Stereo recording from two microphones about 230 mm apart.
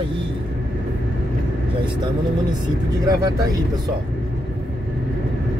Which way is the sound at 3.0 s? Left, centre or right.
Centre.